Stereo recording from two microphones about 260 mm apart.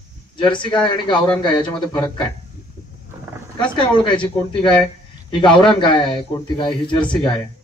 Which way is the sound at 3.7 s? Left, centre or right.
Centre.